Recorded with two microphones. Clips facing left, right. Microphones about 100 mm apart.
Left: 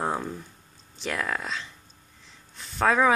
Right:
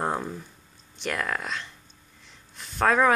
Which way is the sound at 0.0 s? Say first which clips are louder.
Even; centre (ahead or behind).